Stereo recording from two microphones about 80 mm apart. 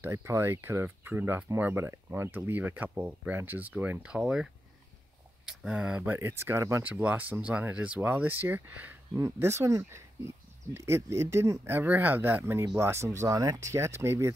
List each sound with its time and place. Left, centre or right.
0.0 s speech: right
4.1 s speech: centre
6.1 s speech: right
6.8 s speech: centre
9.1 s speech: right
11.7 s speech: right